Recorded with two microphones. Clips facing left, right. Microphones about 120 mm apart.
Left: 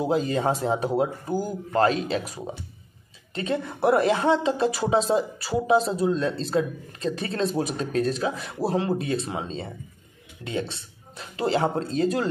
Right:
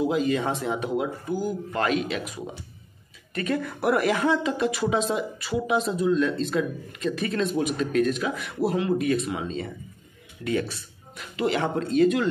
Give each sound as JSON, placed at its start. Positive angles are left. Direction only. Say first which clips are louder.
{"t": 0.0, "sound": "speech", "louder": "even", "side_deg": 35}